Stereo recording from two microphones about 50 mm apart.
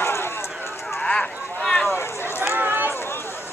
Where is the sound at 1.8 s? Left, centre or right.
Left.